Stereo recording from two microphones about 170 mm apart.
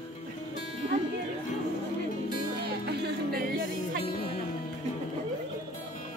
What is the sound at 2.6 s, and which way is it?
Music, 70° right (ahead or behind).